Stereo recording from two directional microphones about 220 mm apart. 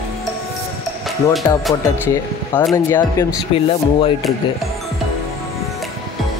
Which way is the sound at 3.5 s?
25° left (ahead or behind).